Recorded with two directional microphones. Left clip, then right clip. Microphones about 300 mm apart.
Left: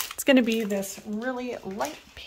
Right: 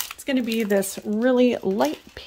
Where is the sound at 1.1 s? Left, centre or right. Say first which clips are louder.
Right 13 dB; right.